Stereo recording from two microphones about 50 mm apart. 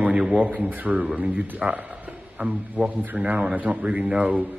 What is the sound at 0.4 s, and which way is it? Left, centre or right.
A man's voice, right.